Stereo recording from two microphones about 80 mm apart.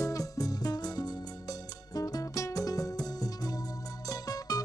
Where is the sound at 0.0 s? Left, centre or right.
Left.